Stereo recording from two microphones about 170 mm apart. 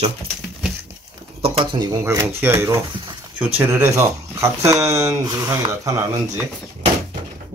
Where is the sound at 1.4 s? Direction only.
30° right (ahead or behind).